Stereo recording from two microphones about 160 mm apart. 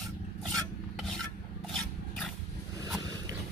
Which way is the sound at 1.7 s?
5° left (ahead or behind).